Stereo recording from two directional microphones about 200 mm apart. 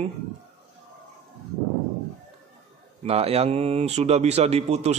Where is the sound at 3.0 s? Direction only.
30° right (ahead or behind).